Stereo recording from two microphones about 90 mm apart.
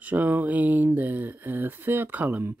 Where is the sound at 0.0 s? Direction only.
20° right (ahead or behind).